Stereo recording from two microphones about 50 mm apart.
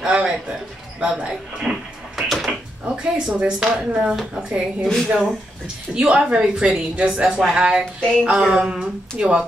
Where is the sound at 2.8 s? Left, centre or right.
Centre.